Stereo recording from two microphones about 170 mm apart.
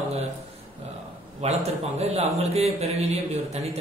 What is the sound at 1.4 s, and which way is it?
A man's voice, 40° right (ahead or behind).